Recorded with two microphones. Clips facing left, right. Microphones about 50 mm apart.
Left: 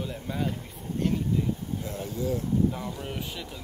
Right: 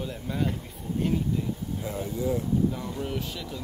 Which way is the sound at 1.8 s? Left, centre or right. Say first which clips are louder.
Right 3 dB; right.